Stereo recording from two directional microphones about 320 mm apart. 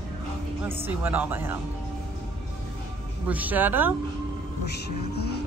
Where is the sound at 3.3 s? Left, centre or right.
Centre.